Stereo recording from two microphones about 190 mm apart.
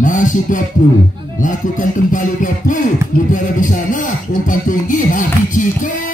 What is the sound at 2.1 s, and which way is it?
Music, 45° left (ahead or behind).